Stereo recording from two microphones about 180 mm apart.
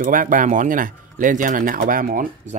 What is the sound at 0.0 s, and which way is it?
A man's voice, 50° right (ahead or behind).